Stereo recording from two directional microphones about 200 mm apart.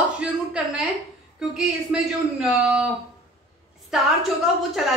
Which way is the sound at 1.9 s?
5° right (ahead or behind).